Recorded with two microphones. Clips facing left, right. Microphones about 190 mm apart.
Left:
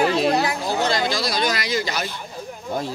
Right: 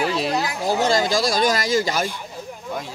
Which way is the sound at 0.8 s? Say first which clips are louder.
Right 4 dB; 45° right (ahead or behind).